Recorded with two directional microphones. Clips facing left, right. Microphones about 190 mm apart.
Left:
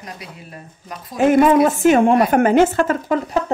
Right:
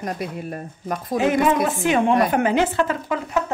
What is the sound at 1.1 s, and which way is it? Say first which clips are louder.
Speech: left 6 dB; 50° left (ahead or behind).